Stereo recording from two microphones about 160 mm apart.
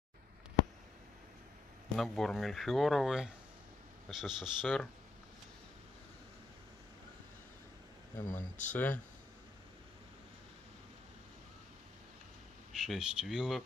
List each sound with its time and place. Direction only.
2.0 s speech: centre (ahead or behind)
8.3 s speech: 50° left (ahead or behind)
8.7 s speech: 10° left (ahead or behind)
12.7 s speech: centre (ahead or behind)